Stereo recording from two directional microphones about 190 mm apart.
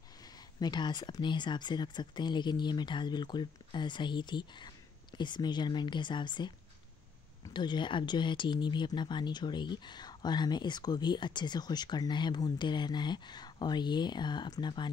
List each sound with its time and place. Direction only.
0.2 s speech: 20° left (ahead or behind)